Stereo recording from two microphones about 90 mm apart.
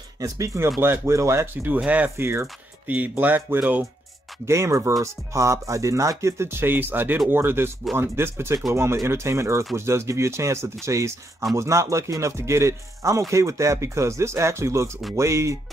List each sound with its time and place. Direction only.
0.2 s speech: 35° right (ahead or behind)
0.7 s speech: 25° right (ahead or behind)
1.8 s speech: 15° right (ahead or behind)
2.0 s speech: 30° right (ahead or behind)
2.9 s speech: 20° right (ahead or behind)
4.5 s speech: 30° right (ahead or behind)